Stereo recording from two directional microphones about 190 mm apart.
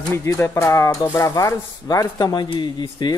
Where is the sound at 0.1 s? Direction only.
15° left (ahead or behind).